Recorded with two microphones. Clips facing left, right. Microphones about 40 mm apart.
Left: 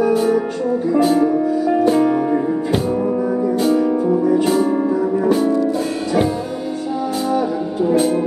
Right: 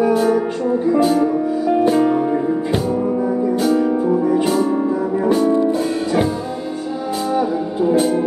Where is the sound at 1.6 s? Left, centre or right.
Centre.